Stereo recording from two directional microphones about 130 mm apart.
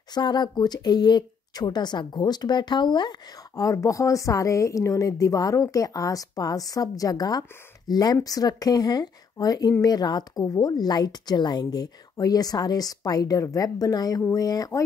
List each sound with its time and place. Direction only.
0.1 s speech: 35° left (ahead or behind)